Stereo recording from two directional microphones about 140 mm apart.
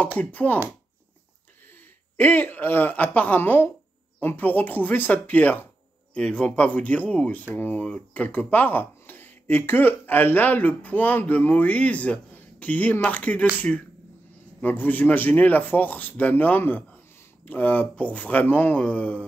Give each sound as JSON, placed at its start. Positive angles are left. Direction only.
{"t": 0.2, "sound": "speech", "side_deg": 10}
{"t": 2.1, "sound": "speech", "side_deg": 15}